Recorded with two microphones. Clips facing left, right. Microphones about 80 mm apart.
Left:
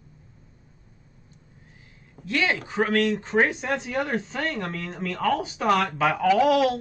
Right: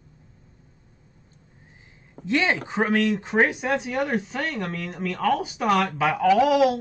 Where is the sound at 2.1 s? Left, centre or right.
Right.